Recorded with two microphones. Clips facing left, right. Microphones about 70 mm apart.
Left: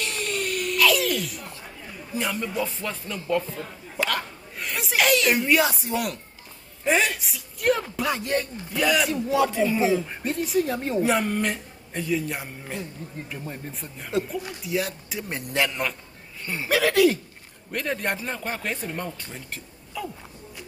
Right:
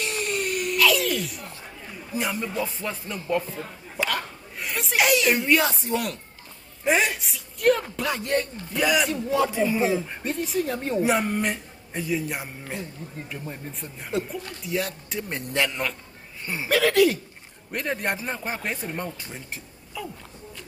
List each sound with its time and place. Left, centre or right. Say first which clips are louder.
0.0 s a sound: right 1 dB; centre
0.7 s a sound: left 1 dB; centre
2.1 s speech: even; centre
4.0 s hiccup: left 1 dB; centre
4.9 s speech: even; centre
6.8 s a woman's voice: even; centre
7.2 s speech: even; centre
11.0 s speech: even; centre
17.6 s speech: even; centre